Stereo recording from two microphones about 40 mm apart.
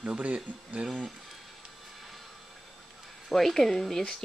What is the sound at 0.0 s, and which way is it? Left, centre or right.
Speech, right.